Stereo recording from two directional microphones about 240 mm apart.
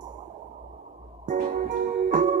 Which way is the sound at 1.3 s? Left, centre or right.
Right.